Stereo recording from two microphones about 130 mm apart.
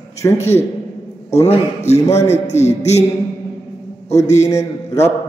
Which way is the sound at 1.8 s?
60° left (ahead or behind).